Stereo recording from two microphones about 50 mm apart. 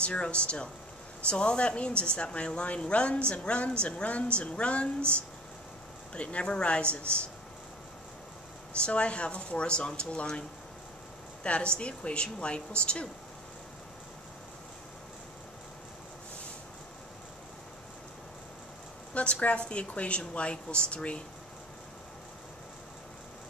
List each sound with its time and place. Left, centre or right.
0.0 s a woman's voice: left
6.1 s a woman's voice: left
8.8 s a woman's voice: left
11.4 s a woman's voice: left
19.1 s a woman's voice: left